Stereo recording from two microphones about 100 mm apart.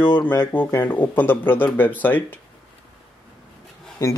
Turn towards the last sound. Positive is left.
turn(degrees=30)  # may be behind; listen again after turning